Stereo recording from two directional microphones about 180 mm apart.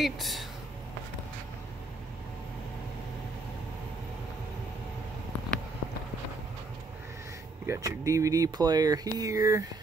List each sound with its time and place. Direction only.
0.0 s speech: centre (ahead or behind)
7.6 s speech: 15° right (ahead or behind)